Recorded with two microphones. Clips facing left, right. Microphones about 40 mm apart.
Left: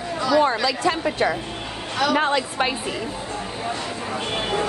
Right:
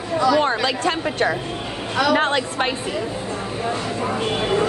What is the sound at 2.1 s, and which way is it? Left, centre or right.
Speech, right.